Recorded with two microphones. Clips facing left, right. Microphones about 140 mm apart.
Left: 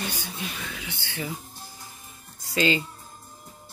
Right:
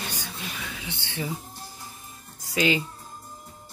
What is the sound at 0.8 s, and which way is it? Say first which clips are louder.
Speech: right 3 dB; 25° right (ahead or behind).